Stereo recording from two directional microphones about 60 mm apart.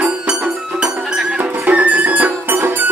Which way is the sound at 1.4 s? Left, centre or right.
Right.